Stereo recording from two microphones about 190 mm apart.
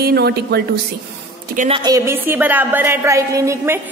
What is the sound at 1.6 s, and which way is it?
A woman's voice, 30° right (ahead or behind).